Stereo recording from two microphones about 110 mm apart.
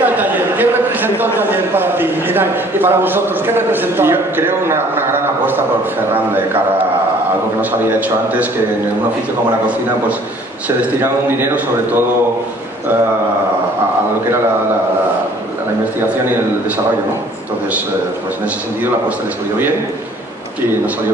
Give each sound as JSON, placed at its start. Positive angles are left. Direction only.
{"t": 0.0, "sound": "a man's voice", "side_deg": -15}
{"t": 7.9, "sound": "a man's voice", "side_deg": -15}
{"t": 11.0, "sound": "speech", "side_deg": -20}